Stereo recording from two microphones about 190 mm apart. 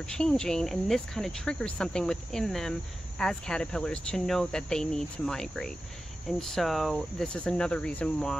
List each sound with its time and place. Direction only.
0.0 s speech: 5° left (ahead or behind)